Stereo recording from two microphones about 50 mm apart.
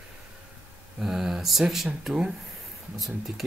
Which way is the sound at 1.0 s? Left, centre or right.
Centre.